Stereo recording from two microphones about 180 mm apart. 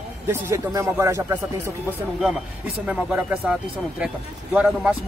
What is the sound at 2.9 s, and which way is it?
Speech, 5° right (ahead or behind).